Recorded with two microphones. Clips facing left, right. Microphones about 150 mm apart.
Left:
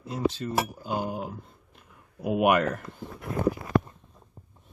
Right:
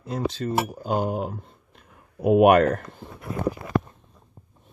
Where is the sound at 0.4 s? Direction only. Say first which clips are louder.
Right 4 dB; 40° right (ahead or behind).